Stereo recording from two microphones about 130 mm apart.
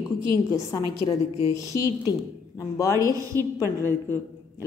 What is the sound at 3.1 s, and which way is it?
Speech, 25° right (ahead or behind).